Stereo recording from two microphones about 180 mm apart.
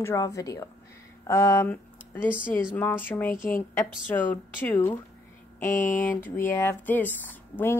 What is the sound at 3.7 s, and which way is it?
A woman's voice, 10° left (ahead or behind).